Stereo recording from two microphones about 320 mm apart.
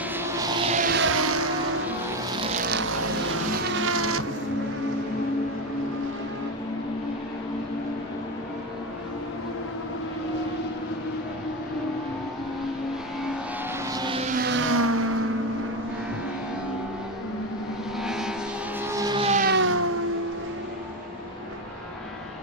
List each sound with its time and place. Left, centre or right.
0.1 s a sound: centre; by 1.4 s right
3.7 s cat: right
13.9 s vehicle: centre; by 15.1 s right
18.0 s vehicle: centre
18.9 s music: centre; by 19.8 s right